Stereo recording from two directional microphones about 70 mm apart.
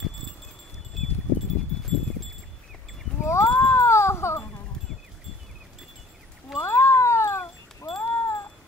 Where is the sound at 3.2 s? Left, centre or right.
Left.